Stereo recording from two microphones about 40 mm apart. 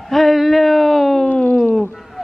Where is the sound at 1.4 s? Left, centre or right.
Left.